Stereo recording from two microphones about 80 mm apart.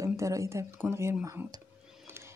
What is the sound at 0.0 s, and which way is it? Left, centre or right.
Speech, right.